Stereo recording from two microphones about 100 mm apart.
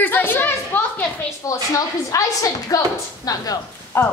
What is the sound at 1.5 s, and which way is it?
A woman's voice, 35° left (ahead or behind).